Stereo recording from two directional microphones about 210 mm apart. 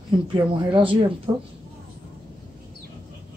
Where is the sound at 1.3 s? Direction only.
15° right (ahead or behind).